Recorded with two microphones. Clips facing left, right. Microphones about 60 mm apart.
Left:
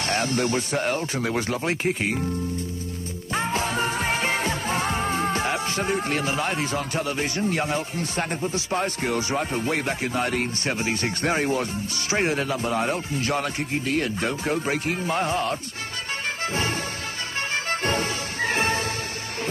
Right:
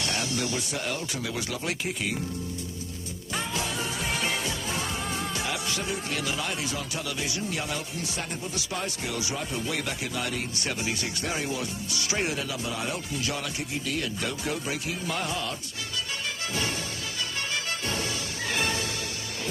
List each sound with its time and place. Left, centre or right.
0.0 s a man's voice: left
3.3 s music: left
12.1 s a man's voice: left
17.6 s music: left